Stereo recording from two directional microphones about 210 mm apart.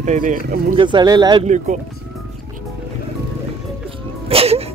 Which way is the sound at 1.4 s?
35° right (ahead or behind).